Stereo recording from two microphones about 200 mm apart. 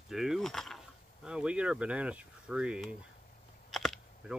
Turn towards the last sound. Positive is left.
turn(degrees=0)  # may be behind; listen again after turning